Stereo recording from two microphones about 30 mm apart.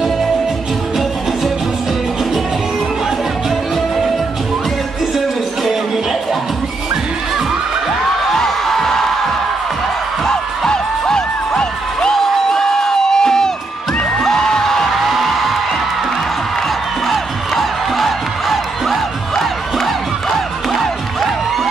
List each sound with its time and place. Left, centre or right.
8.4 s music: centre
12.2 s crowd: centre
14.2 s music: centre
15.1 s music: centre
17.1 s music: centre
19.3 s music: centre